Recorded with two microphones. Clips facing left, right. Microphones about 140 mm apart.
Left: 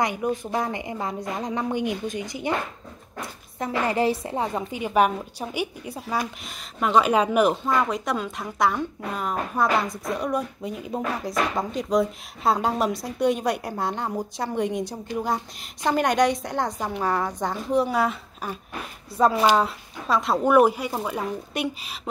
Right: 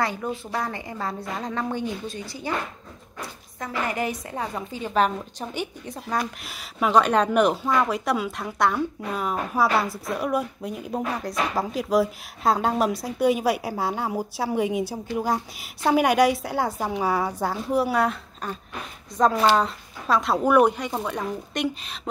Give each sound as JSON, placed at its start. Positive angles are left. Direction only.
{"t": 0.0, "sound": "a woman's voice", "side_deg": 15}